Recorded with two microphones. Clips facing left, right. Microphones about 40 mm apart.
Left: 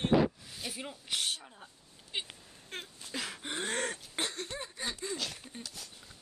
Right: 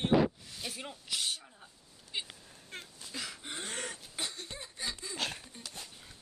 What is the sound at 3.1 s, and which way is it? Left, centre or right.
Throat clearing, left.